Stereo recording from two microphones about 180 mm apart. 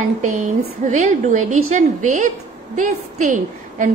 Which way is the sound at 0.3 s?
40° right (ahead or behind).